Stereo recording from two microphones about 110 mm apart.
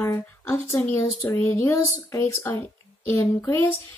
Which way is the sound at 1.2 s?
15° left (ahead or behind).